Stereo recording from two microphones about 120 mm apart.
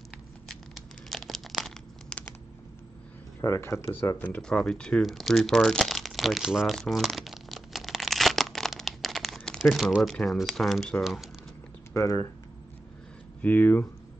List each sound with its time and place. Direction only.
0.5 s crumpling: centre (ahead or behind)
3.3 s speech: 20° left (ahead or behind); by 11.2 s centre (ahead or behind)
11.9 s speech: 25° left (ahead or behind)
13.4 s speech: 10° left (ahead or behind)